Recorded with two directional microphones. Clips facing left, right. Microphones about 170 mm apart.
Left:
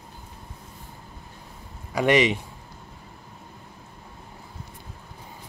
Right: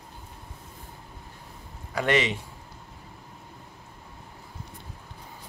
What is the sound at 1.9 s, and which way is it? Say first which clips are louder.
Speech: left 5 dB; 15° left (ahead or behind).